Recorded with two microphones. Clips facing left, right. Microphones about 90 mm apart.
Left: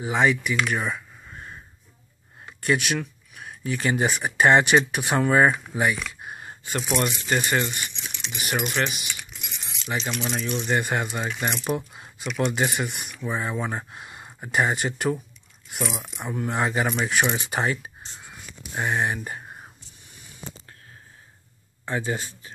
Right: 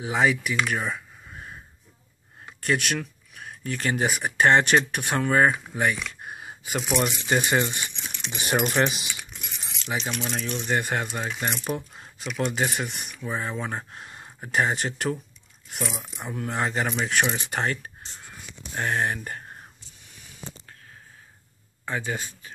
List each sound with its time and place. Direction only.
0.0 s speech: centre (ahead or behind)
7.2 s speech: 15° right (ahead or behind)
7.9 s speech: 45° right (ahead or behind)
8.3 s speech: 30° right (ahead or behind)
8.8 s speech: 25° right (ahead or behind)
9.8 s speech: 10° right (ahead or behind)
10.7 s speech: centre (ahead or behind)
21.8 s speech: 10° left (ahead or behind)